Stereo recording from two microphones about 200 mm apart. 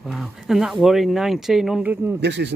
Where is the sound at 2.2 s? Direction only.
60° right (ahead or behind).